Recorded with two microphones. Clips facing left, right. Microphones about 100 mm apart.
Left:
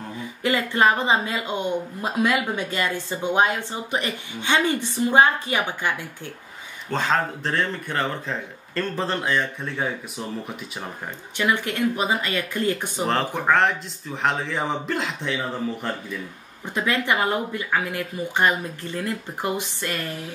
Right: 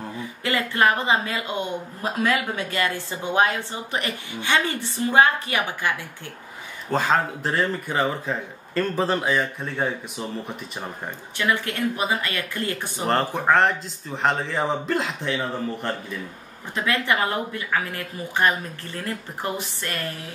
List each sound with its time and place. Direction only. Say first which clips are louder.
0.4 s speech: left 1 dB; 20° left (ahead or behind)
6.9 s speech: right 1 dB; 5° right (ahead or behind)
11.3 s speech: left 1 dB; 20° left (ahead or behind)
13.0 s speech: right 1 dB; centre (ahead or behind)
16.7 s speech: left 1 dB; 20° left (ahead or behind)